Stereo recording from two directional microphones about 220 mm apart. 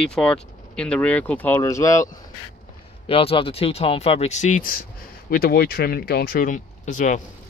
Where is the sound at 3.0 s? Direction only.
25° left (ahead or behind).